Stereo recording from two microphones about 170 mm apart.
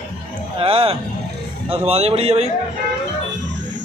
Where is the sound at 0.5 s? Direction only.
35° right (ahead or behind).